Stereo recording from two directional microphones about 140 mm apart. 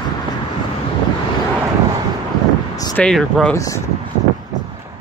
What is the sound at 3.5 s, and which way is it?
Speech, 20° left (ahead or behind).